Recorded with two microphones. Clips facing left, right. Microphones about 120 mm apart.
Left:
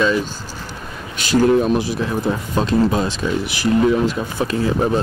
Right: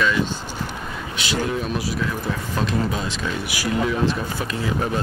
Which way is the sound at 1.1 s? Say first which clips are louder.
Left 11 dB; 45° left (ahead or behind).